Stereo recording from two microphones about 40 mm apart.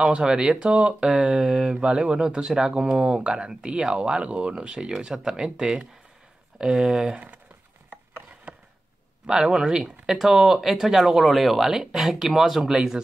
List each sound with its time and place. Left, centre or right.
0.0 s speech: right
8.5 s a sound: right
9.2 s speech: centre
12.7 s speech: centre